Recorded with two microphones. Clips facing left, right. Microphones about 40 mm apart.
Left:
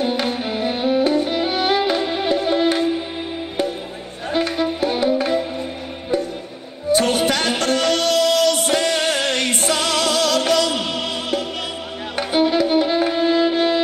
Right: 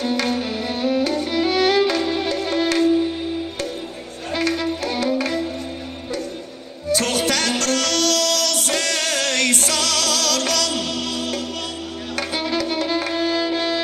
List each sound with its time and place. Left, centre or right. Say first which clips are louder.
0.0 s violin: left 1 dB; left
4.3 s music: left 2 dB; left
6.9 s music: left 3 dB; centre
12.2 s violin: left 6 dB; left